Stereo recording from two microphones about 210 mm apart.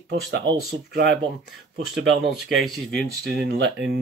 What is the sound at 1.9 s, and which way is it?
Speech, centre (ahead or behind).